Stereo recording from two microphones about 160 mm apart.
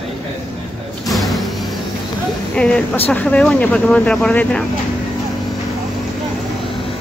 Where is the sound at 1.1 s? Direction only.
Centre (ahead or behind).